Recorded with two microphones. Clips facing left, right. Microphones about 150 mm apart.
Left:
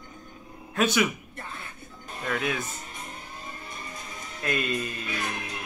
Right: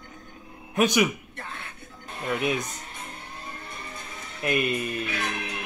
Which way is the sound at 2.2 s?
20° right (ahead or behind).